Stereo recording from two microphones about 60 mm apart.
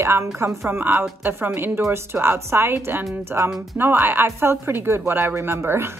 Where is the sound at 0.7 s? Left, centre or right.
Right.